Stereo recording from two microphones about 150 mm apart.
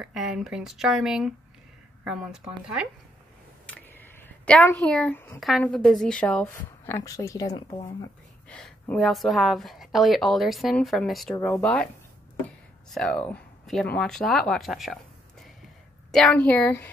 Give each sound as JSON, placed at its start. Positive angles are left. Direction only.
{"t": 0.0, "sound": "a woman's voice", "side_deg": -5}
{"t": 3.6, "sound": "a sound", "side_deg": 10}
{"t": 5.6, "sound": "a woman's voice", "side_deg": 5}
{"t": 6.5, "sound": "speech", "side_deg": 20}
{"t": 8.5, "sound": "a woman's voice", "side_deg": 5}
{"t": 12.9, "sound": "a woman's voice", "side_deg": 5}
{"t": 16.1, "sound": "a woman's voice", "side_deg": 5}